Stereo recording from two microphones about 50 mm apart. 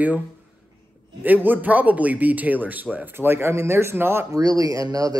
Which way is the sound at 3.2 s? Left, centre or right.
Right.